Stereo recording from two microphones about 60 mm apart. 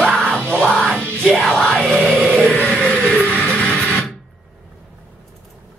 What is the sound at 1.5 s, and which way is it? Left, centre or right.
Crowd, centre.